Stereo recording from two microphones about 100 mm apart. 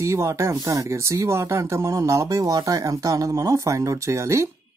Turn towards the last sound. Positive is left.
turn(degrees=-30)  # may be behind; listen again after turning